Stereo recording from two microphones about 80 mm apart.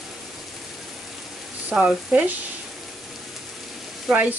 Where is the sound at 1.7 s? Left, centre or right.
Centre.